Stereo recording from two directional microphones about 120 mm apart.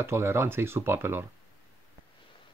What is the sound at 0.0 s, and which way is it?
Speech, 20° right (ahead or behind).